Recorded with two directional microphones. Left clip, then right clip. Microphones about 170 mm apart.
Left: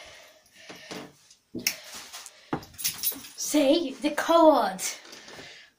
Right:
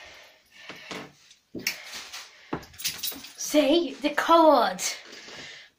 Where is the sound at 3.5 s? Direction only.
10° left (ahead or behind).